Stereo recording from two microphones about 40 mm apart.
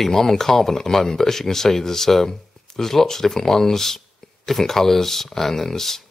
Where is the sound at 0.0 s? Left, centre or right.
Centre.